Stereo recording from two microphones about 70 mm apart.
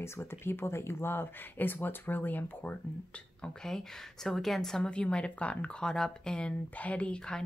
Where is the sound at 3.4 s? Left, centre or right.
Centre.